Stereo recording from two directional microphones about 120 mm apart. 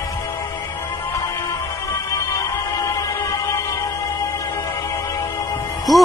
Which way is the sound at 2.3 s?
25° left (ahead or behind).